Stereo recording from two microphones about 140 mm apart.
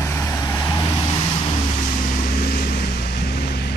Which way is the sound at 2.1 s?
85° left.